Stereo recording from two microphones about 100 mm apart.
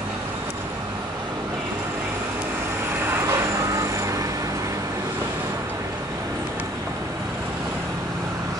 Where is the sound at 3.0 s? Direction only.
25° right (ahead or behind).